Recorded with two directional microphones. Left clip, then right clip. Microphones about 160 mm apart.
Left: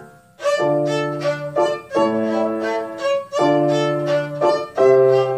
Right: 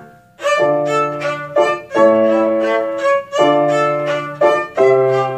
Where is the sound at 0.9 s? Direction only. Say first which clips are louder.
Right 4 dB; 25° right (ahead or behind).